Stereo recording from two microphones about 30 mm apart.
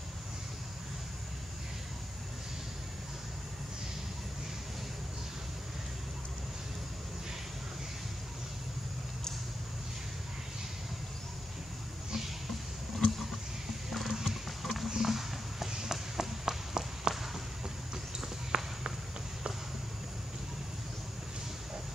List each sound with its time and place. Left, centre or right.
13.8 s music: centre
14.6 s clip-clop: centre
15.0 s a sound: centre
18.5 s walk: right